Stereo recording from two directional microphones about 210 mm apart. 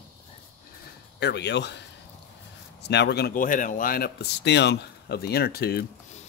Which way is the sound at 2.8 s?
55° left (ahead or behind).